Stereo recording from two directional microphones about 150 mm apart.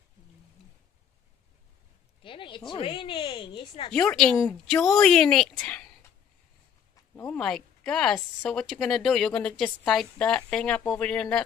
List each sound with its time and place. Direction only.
2.2 s a woman's voice: 35° left (ahead or behind)
3.9 s speech: 5° left (ahead or behind)
7.2 s speech: 5° left (ahead or behind)